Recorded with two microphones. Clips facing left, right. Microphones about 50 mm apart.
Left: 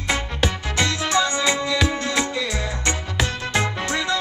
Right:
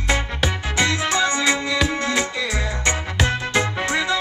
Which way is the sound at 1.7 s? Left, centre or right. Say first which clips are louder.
Right 1 dB; centre.